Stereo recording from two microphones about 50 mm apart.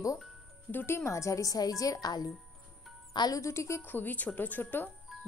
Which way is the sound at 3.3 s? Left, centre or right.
Left.